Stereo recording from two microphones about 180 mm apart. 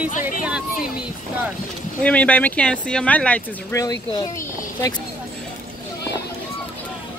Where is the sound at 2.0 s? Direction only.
10° left (ahead or behind).